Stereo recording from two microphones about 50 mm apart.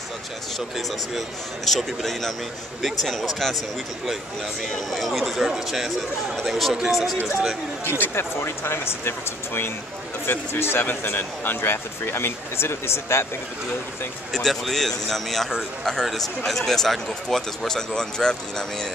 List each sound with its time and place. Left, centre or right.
0.6 s speech: centre
4.7 s speech: centre
5.2 s speech: centre
8.0 s speech: left
14.3 s speech: centre